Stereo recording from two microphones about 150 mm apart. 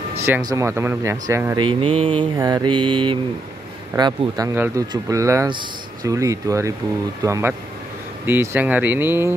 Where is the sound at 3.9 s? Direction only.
30° right (ahead or behind).